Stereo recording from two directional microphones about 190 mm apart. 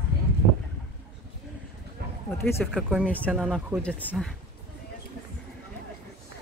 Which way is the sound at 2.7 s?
5° right (ahead or behind).